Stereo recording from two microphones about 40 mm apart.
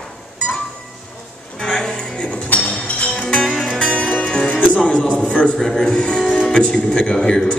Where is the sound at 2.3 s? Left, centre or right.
Left.